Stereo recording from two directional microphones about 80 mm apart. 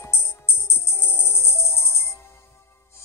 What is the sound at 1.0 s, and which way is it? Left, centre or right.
Music, left.